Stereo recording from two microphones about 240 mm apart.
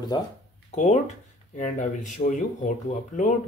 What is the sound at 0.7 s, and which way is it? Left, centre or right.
Speech, left.